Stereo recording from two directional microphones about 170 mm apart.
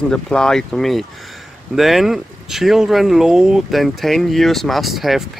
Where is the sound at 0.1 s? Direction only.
5° left (ahead or behind).